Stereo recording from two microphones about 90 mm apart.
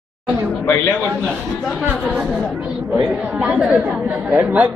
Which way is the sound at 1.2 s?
Centre (ahead or behind).